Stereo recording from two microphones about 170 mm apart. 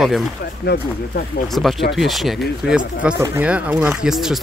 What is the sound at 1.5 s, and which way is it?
Speech, centre (ahead or behind).